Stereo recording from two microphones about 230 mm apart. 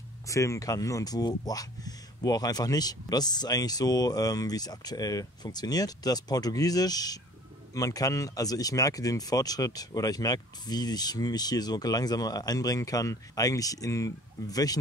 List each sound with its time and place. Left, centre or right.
0.3 s speech: centre